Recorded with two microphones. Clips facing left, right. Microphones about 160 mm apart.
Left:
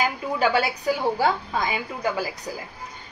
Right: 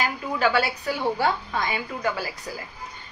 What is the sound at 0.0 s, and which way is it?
A woman's voice, 15° left (ahead or behind).